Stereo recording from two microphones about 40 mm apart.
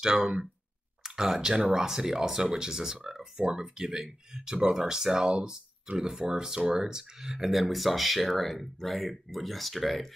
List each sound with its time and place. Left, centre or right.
0.0 s speech: centre